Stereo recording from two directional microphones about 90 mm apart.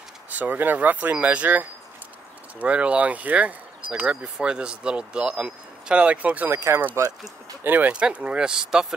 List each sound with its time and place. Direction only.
0.3 s speech: 20° right (ahead or behind)